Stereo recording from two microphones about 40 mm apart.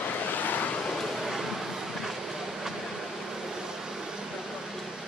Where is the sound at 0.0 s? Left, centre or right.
Left.